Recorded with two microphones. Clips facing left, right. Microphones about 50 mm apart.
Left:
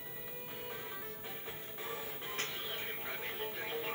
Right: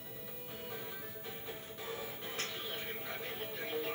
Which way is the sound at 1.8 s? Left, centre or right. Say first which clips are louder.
Even; centre.